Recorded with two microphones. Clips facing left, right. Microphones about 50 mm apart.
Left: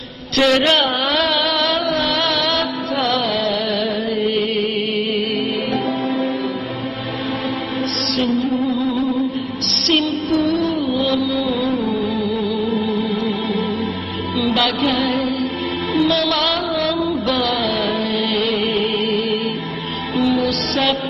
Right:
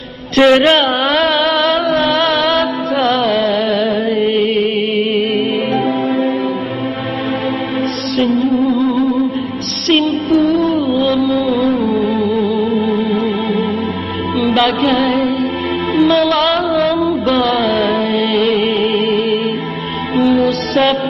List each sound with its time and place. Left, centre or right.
0.4 s a man's voice: right
1.5 s a sound: right
2.1 s music: right
3.8 s music: centre
8.4 s music: centre
9.8 s music: right
10.4 s music: centre
14.5 s music: right
14.9 s music: centre
16.1 s a man's voice: right
17.4 s music: centre